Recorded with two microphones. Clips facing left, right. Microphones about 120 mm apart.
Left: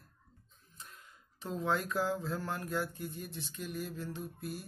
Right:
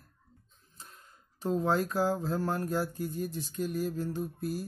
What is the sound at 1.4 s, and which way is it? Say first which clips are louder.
Speech: right 6 dB; 40° right (ahead or behind).